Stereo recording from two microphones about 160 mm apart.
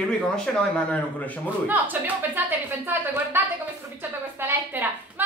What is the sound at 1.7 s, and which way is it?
A woman's voice, 10° right (ahead or behind).